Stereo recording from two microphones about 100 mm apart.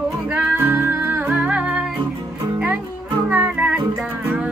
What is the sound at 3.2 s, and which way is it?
Music, 15° right (ahead or behind).